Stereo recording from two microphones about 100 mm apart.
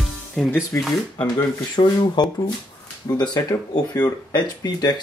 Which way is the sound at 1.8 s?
60° left (ahead or behind).